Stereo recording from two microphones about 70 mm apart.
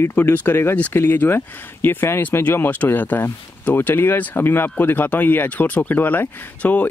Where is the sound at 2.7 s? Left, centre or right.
Left.